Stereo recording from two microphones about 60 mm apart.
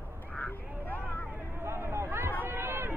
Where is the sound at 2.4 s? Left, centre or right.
Right.